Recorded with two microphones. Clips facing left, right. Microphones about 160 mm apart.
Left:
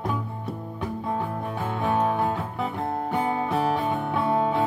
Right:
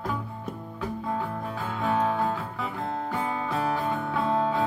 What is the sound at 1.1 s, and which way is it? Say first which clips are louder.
Music: left 3 dB; 25° left (ahead or behind).